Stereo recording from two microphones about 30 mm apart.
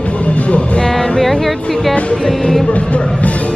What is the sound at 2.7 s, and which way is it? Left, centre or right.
Speech, left.